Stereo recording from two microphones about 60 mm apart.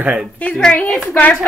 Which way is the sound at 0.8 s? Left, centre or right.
Centre.